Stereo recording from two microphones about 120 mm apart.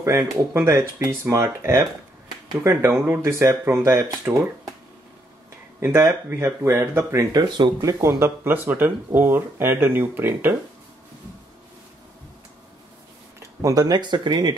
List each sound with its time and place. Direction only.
0.0 s speech: 25° right (ahead or behind)
5.8 s speech: 20° right (ahead or behind)
7.3 s speech: 40° right (ahead or behind)
8.0 s speech: 20° right (ahead or behind)
13.6 s speech: 30° right (ahead or behind)